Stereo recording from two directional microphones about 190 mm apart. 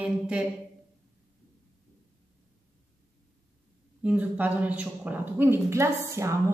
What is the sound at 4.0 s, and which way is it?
Speech, 10° right (ahead or behind).